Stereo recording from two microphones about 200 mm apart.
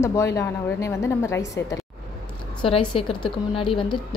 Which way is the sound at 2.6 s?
25° left (ahead or behind).